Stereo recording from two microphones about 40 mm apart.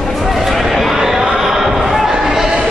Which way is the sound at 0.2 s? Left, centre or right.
Centre.